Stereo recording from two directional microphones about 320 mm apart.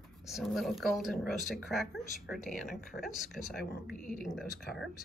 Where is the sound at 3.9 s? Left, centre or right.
Left.